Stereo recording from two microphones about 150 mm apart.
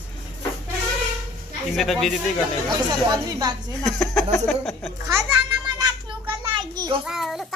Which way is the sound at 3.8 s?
5° left (ahead or behind).